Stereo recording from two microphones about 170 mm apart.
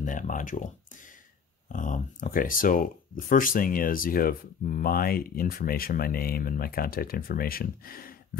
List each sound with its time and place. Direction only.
0.0 s speech: 50° left (ahead or behind)
1.7 s speech: 50° left (ahead or behind)